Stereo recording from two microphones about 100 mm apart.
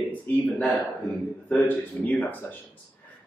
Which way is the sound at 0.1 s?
15° left (ahead or behind).